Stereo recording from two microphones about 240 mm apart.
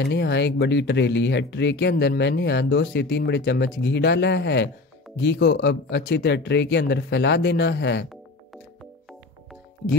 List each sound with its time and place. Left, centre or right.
0.0 s speech: left